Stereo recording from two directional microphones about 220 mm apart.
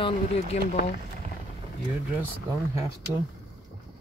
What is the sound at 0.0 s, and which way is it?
Speech, 30° left (ahead or behind).